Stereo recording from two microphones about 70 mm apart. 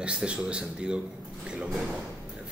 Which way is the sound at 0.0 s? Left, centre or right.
Centre.